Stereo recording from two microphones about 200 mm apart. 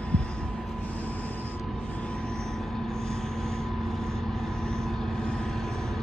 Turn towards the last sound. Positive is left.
turn(degrees=0)  # may be behind; listen again after turning